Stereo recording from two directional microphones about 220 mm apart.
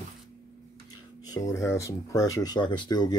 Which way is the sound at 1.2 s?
15° left (ahead or behind).